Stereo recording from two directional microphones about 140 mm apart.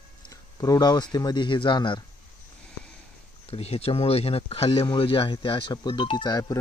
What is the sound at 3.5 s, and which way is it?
Speech, 45° left (ahead or behind).